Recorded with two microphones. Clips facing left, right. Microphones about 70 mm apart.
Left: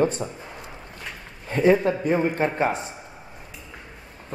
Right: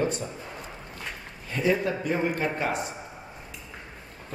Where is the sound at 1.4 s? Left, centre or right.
Left.